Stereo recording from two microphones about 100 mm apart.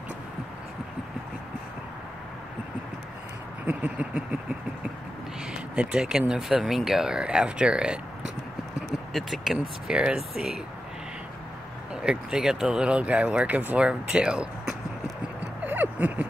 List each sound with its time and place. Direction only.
3.6 s speech: 15° right (ahead or behind)
5.5 s speech: 10° right (ahead or behind)
9.1 s speech: centre (ahead or behind)
11.9 s speech: 10° right (ahead or behind)
15.6 s a sound: 15° right (ahead or behind)